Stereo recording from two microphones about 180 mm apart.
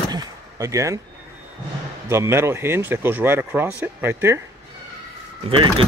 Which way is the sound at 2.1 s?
15° right (ahead or behind).